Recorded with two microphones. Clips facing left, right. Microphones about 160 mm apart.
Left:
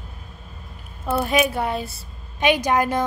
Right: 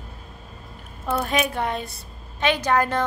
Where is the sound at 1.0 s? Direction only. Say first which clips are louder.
Left 3 dB; 10° left (ahead or behind).